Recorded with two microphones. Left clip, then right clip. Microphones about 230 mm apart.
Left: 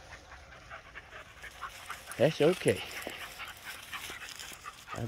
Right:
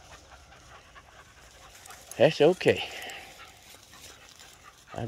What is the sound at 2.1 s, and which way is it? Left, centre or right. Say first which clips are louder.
Speech: right 6 dB; centre.